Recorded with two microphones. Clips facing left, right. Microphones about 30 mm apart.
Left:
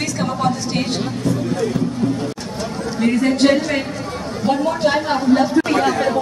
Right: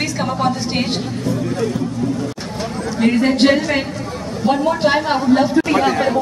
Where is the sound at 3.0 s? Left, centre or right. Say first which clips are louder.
Right 1 dB; right.